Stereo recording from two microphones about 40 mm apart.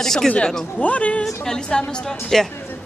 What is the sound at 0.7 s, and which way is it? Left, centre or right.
Speech, left.